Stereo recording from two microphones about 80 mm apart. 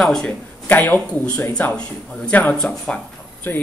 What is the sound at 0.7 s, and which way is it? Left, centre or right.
Speech, left.